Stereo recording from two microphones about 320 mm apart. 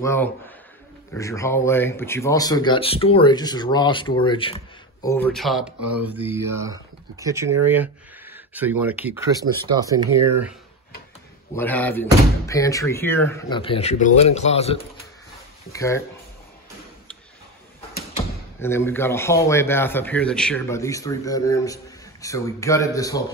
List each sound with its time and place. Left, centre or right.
0.0 s speech: centre
11.5 s speech: centre
18.6 s speech: centre